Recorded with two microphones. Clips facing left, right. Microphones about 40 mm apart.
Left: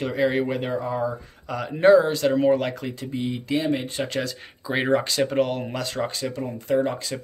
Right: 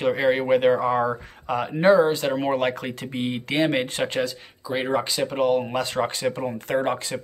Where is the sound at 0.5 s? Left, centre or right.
Right.